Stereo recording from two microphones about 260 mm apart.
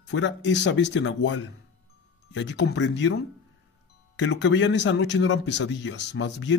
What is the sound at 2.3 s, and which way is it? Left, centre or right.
Speech, left.